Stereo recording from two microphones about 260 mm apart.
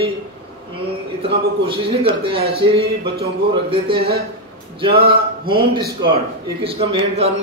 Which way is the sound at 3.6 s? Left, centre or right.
Centre.